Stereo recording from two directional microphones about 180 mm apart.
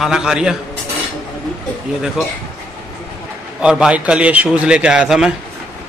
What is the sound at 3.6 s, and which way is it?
A man's voice, 5° right (ahead or behind).